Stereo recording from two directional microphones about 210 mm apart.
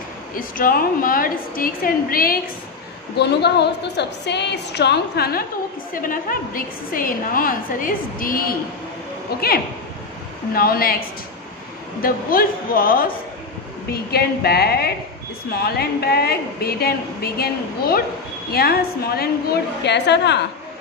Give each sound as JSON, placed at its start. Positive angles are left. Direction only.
{"t": 0.3, "sound": "a woman's voice", "side_deg": 40}
{"t": 10.5, "sound": "a woman's voice", "side_deg": 45}
{"t": 12.0, "sound": "a woman's voice", "side_deg": 45}